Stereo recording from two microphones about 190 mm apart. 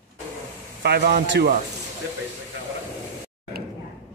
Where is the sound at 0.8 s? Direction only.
60° right (ahead or behind).